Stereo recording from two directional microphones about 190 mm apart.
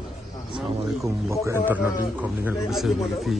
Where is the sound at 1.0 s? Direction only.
15° right (ahead or behind).